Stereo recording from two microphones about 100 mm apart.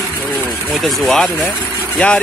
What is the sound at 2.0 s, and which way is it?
Speech, 15° left (ahead or behind).